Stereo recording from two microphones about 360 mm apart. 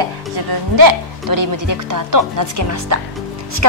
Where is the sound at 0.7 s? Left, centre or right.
Right.